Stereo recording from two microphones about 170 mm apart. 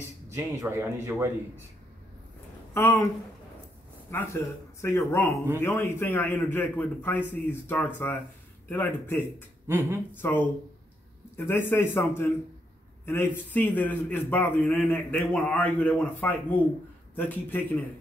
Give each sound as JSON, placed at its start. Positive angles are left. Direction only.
{"t": 0.3, "sound": "a man's voice", "side_deg": -15}
{"t": 2.7, "sound": "a man's voice", "side_deg": 15}
{"t": 4.1, "sound": "a man's voice", "side_deg": 15}
{"t": 9.7, "sound": "a man's voice", "side_deg": -10}
{"t": 10.1, "sound": "a man's voice", "side_deg": 10}